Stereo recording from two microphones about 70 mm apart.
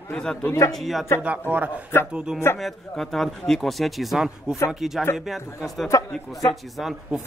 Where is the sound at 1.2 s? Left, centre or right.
Right.